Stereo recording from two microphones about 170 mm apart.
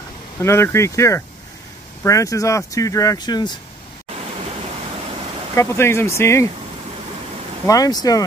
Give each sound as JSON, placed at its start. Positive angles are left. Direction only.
{"t": 0.4, "sound": "speech", "side_deg": 15}
{"t": 5.6, "sound": "speech", "side_deg": 15}
{"t": 7.6, "sound": "speech", "side_deg": 20}